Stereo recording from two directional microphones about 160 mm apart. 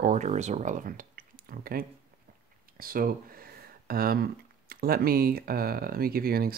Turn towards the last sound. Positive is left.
turn(degrees=-70)  # may be behind; listen again after turning